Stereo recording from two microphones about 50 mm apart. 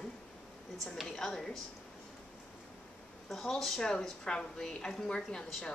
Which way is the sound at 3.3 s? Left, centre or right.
Centre.